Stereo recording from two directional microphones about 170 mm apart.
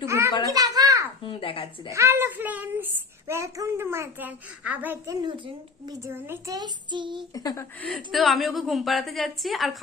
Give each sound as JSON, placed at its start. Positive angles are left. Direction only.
{"t": 0.0, "sound": "children playing", "side_deg": -15}
{"t": 1.2, "sound": "a sound", "side_deg": 30}
{"t": 1.9, "sound": "child singing", "side_deg": -15}
{"t": 5.4, "sound": "a child's voice", "side_deg": -20}
{"t": 7.3, "sound": "speech", "side_deg": 20}
{"t": 7.8, "sound": "a woman's voice", "side_deg": 0}